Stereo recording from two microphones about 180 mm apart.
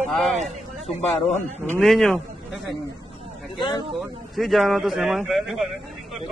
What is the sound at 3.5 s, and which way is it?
Speech, 25° left (ahead or behind).